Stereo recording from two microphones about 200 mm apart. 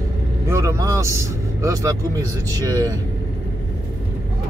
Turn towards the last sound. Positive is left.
turn(degrees=-15)  # may be behind; listen again after turning